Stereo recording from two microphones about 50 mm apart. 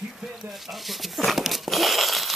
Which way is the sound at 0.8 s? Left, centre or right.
Centre.